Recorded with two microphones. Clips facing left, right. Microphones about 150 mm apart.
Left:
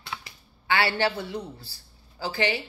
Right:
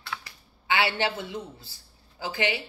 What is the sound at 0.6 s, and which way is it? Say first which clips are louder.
A man's voice: left 1 dB; 20° right (ahead or behind).